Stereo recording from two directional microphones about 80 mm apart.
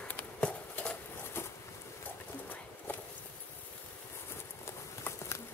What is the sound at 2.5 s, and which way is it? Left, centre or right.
Clip-clop, left.